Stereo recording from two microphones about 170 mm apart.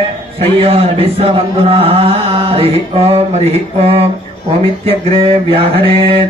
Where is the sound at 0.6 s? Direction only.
35° right (ahead or behind).